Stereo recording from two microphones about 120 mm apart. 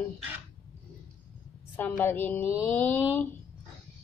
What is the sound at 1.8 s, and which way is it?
A woman's voice, 15° left (ahead or behind).